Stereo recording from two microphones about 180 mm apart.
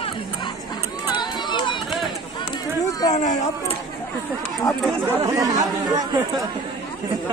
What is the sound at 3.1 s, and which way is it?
Speech, 40° left (ahead or behind).